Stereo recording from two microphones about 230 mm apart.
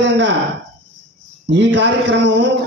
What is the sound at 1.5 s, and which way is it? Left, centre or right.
Speech, right.